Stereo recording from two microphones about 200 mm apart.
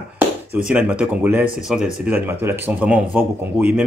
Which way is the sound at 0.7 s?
5° right (ahead or behind).